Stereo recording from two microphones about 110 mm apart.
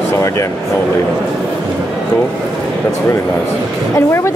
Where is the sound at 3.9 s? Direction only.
25° left (ahead or behind).